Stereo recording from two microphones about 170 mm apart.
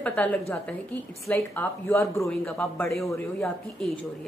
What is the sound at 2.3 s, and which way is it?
A woman's voice, 5° left (ahead or behind).